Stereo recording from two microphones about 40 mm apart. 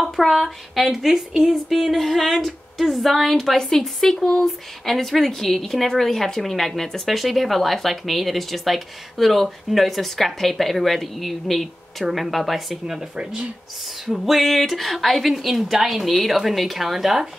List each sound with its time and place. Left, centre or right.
0.1 s a woman's voice: centre
1.7 s a woman's voice: centre
12.8 s speech: centre
14.0 s a woman's voice: centre